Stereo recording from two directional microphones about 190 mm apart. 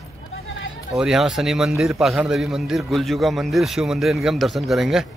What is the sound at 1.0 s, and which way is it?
A man's voice, 5° right (ahead or behind).